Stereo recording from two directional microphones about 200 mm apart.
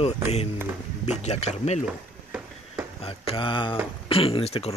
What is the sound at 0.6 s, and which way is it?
Speech, 10° right (ahead or behind).